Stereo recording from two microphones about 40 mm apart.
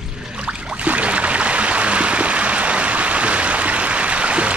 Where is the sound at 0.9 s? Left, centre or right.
Right.